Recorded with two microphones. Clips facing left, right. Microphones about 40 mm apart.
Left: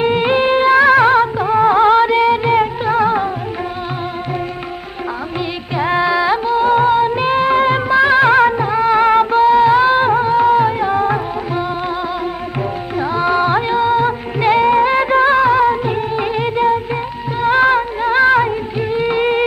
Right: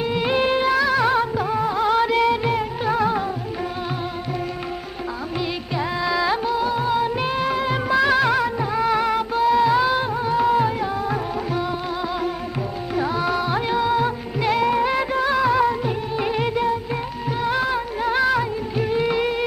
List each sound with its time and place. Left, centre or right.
0.0 s music: left
2.0 s music: left
6.0 s music: left
6.6 s music: left
9.0 s music: left
9.5 s music: left
10.3 s music: left
10.9 s music: left
12.9 s music: left
18.9 s music: left